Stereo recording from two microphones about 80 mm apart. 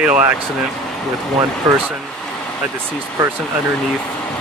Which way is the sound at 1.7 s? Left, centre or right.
Right.